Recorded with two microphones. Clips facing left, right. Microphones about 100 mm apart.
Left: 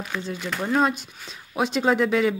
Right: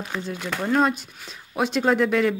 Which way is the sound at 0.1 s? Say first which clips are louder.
Even; 20° right (ahead or behind).